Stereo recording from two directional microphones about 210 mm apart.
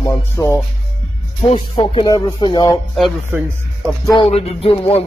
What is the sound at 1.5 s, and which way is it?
Speech, 25° left (ahead or behind).